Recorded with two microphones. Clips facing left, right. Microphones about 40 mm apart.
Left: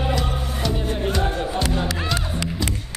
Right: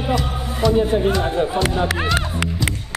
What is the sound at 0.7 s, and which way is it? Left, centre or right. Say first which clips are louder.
Speech: right 7 dB; centre.